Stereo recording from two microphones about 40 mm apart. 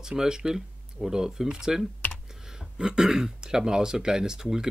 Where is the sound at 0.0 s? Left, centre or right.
Centre.